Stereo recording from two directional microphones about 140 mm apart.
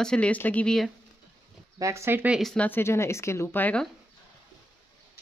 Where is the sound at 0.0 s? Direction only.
5° left (ahead or behind).